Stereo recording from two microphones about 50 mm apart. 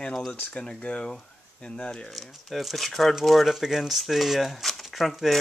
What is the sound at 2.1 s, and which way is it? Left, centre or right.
Speech, centre.